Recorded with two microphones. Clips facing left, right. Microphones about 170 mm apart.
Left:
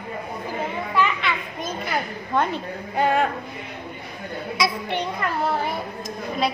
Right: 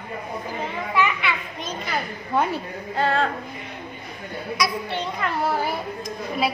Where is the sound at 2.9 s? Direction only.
15° left (ahead or behind).